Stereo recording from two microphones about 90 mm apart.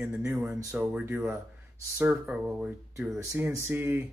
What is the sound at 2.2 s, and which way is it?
Speech, 5° right (ahead or behind).